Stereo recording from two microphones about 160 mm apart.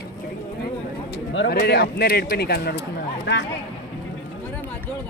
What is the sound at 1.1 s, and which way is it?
Speech, 90° left.